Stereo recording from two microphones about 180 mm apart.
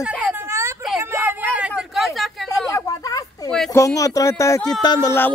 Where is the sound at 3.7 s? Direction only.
15° left (ahead or behind).